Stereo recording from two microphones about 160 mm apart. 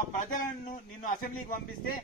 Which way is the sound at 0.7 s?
60° left (ahead or behind).